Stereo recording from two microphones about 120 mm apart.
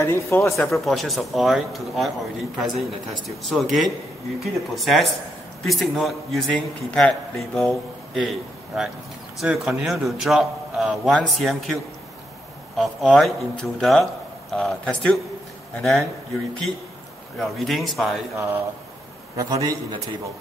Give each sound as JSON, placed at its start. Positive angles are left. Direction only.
{"t": 0.0, "sound": "speech", "side_deg": 20}
{"t": 0.7, "sound": "a man's voice", "side_deg": 0}
{"t": 17.4, "sound": "a man's voice", "side_deg": 0}
{"t": 18.3, "sound": "a man's voice", "side_deg": -25}